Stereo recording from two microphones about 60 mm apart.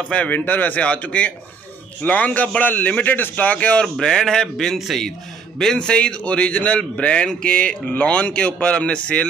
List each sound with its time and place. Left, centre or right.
0.0 s a man's voice: left
3.8 s a man's voice: centre
5.6 s a man's voice: centre